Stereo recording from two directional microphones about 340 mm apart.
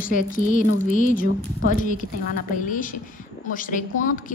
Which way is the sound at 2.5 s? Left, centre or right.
Left.